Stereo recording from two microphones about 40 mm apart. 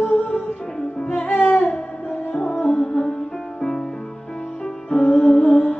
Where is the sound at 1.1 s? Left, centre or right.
Left.